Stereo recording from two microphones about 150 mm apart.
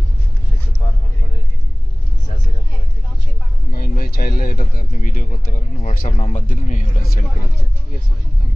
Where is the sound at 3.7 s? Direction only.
75° left (ahead or behind).